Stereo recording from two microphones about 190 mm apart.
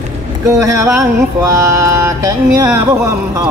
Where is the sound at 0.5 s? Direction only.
15° right (ahead or behind).